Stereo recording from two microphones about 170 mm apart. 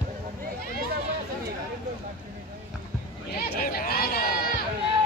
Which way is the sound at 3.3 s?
65° left (ahead or behind).